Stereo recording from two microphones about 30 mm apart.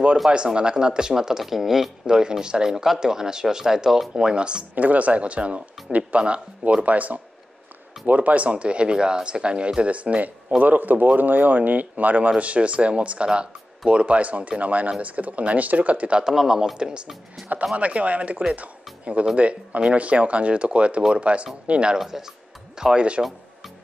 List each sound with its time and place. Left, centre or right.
0.5 s speech: right
1.4 s speech: centre
2.0 s speech: right
4.1 s speech: right
4.7 s speech: right
10.6 s speech: right
12.4 s speech: right
16.3 s speech: centre
16.7 s speech: right
17.4 s speech: centre
17.7 s speech: right
22.0 s speech: centre
22.9 s speech: right